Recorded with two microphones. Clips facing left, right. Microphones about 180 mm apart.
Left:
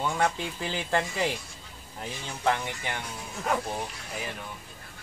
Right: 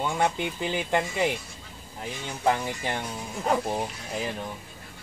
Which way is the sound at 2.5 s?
35° right (ahead or behind).